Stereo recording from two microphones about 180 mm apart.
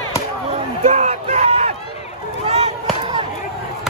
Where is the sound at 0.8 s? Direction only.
40° right (ahead or behind).